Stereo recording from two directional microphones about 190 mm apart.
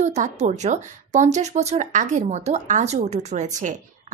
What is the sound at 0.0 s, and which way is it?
A woman's voice, 35° right (ahead or behind).